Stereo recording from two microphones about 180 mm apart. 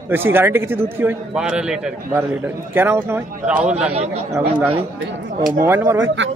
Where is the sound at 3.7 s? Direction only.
35° right (ahead or behind).